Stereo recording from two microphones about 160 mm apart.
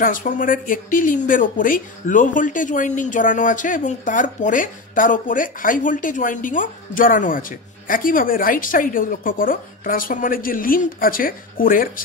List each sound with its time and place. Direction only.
0.0 s speech: 55° left (ahead or behind)